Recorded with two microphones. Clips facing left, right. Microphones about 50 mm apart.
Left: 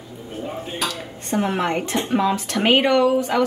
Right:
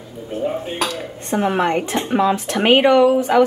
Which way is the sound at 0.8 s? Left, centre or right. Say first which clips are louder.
Right 2 dB; centre.